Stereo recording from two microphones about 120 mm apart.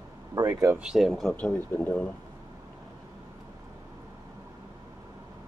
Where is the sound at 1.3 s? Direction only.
15° left (ahead or behind).